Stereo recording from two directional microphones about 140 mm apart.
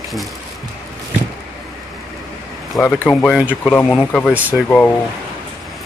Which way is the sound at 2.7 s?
5° left (ahead or behind).